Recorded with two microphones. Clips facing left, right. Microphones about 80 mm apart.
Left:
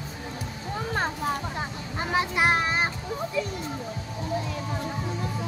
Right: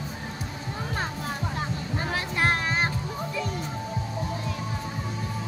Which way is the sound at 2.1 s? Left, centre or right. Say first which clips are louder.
Left 3 dB; centre.